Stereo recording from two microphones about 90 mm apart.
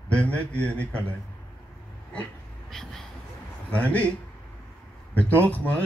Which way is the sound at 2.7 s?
5° left (ahead or behind).